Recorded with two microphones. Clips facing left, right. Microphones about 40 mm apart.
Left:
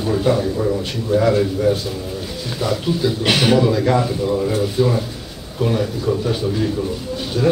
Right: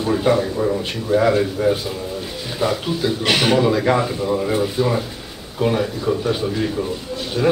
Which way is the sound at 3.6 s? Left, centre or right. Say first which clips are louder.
Even; centre.